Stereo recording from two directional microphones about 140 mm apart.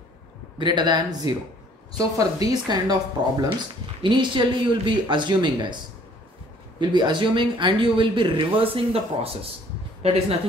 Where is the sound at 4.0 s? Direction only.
35° right (ahead or behind).